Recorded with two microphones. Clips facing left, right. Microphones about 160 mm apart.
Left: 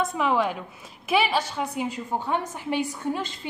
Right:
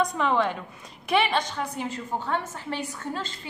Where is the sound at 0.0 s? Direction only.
5° left (ahead or behind).